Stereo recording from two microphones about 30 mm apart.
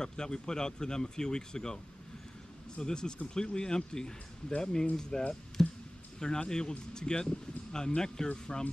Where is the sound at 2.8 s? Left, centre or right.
Left.